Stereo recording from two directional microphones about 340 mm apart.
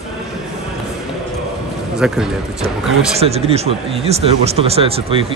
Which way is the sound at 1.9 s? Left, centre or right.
Centre.